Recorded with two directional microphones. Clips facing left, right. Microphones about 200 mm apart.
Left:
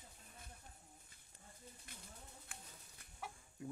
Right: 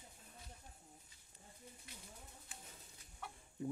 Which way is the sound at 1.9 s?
50° left (ahead or behind).